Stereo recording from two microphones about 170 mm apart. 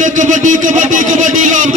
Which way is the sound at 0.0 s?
50° right (ahead or behind).